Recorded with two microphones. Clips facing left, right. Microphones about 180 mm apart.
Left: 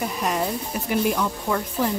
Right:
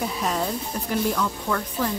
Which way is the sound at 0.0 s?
Centre (ahead or behind).